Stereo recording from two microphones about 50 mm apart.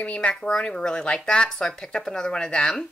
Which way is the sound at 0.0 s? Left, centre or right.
Left.